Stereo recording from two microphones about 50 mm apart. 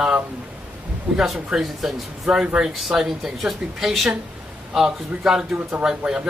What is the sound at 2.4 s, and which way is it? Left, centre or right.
Speech, right.